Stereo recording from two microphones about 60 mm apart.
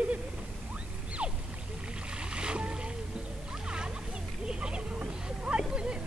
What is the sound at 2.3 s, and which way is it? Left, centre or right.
Boat, centre.